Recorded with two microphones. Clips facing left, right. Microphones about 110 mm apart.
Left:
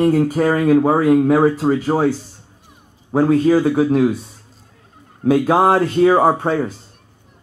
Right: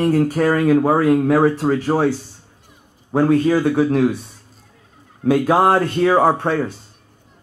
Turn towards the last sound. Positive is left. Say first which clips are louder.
# left 1 dB
turn(degrees=0)  # may be behind; listen again after turning